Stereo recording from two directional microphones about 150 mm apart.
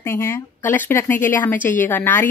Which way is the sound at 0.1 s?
15° left (ahead or behind).